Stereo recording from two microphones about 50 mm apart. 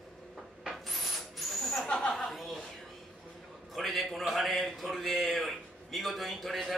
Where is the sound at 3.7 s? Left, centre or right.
Centre.